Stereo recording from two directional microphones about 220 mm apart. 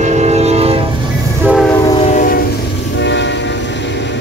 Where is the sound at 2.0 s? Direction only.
35° left (ahead or behind).